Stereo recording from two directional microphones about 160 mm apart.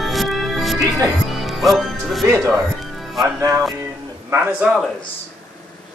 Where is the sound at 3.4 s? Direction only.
20° right (ahead or behind).